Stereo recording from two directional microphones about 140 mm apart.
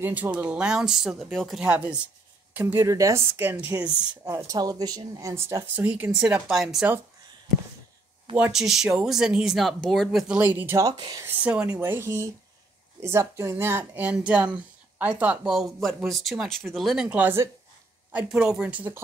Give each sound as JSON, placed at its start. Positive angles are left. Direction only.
{"t": 0.0, "sound": "speech", "side_deg": -10}
{"t": 2.5, "sound": "speech", "side_deg": -20}
{"t": 8.4, "sound": "speech", "side_deg": -5}
{"t": 10.8, "sound": "speech", "side_deg": -30}
{"t": 11.2, "sound": "speech", "side_deg": -10}